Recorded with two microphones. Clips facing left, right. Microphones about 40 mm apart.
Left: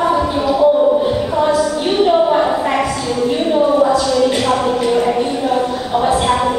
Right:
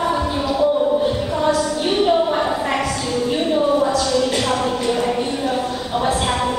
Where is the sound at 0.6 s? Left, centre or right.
Centre.